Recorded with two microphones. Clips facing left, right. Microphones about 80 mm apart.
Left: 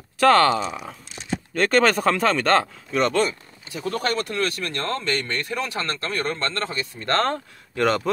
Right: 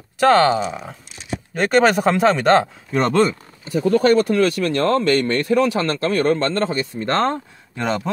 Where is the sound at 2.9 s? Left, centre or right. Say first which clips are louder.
Right 4 dB; right.